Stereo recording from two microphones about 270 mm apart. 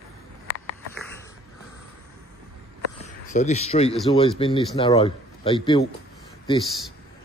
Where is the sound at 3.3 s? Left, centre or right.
Left.